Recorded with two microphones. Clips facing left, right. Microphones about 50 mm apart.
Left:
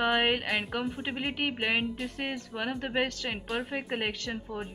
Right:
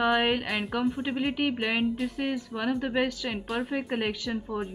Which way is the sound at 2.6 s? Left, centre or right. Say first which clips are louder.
Right 3 dB; centre.